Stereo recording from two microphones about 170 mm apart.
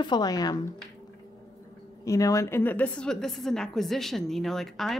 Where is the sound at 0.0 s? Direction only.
25° left (ahead or behind).